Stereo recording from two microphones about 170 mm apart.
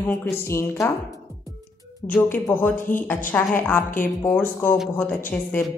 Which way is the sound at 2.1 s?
10° left (ahead or behind).